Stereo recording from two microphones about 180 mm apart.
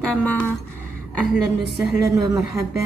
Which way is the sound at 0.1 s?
10° left (ahead or behind).